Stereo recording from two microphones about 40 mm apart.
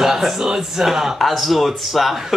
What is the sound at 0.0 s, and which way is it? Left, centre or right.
Speech, centre.